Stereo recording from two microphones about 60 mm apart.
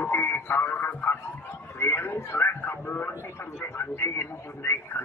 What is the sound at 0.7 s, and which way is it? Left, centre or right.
A man's voice, left.